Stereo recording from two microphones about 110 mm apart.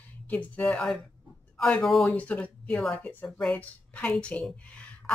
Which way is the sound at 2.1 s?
15° left (ahead or behind).